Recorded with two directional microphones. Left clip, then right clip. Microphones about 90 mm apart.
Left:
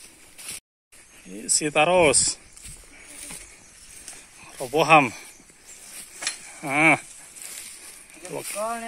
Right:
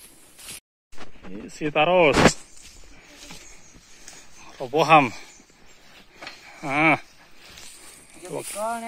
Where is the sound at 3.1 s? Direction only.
20° left (ahead or behind).